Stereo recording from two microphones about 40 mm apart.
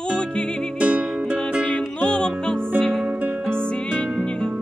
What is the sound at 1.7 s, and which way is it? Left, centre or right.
Music, left.